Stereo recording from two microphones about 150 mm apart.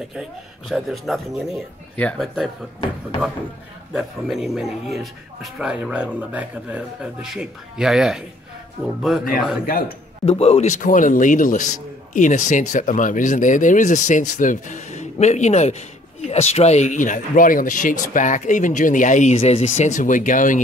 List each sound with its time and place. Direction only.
0.1 s speech: centre (ahead or behind)
3.9 s speech: 5° right (ahead or behind)
10.2 s a man's voice: 40° left (ahead or behind); by 20.6 s 60° left (ahead or behind)